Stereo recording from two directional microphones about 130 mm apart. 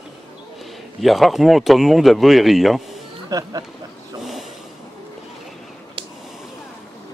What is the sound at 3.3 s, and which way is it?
Speech, 25° right (ahead or behind).